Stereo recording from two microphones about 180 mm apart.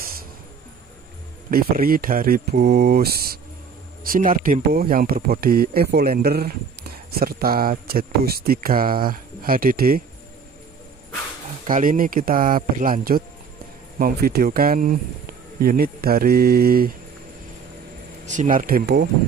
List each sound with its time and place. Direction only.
1.5 s speech: 55° right (ahead or behind)
11.6 s speech: 50° right (ahead or behind)
18.2 s speech: 45° right (ahead or behind); by 19.0 s 60° right (ahead or behind)